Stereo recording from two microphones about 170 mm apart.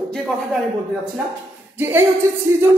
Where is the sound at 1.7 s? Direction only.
15° right (ahead or behind).